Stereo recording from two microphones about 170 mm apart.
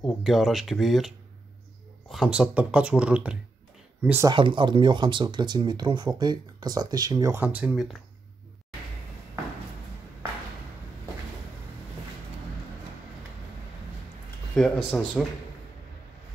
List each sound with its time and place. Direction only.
0.0 s speech: centre (ahead or behind)
4.3 s speech: 30° right (ahead or behind); by 8.0 s 5° right (ahead or behind)
14.5 s speech: 5° left (ahead or behind)